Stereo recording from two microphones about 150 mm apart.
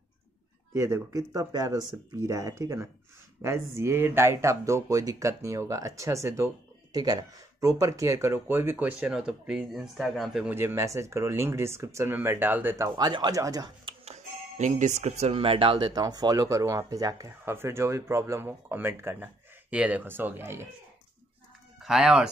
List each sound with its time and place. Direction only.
0.7 s speech: 20° right (ahead or behind); by 10.5 s centre (ahead or behind)
10.5 s speech: 15° right (ahead or behind)
14.0 s speech: 50° right (ahead or behind); by 20.6 s 15° right (ahead or behind)
21.7 s speech: 5° right (ahead or behind)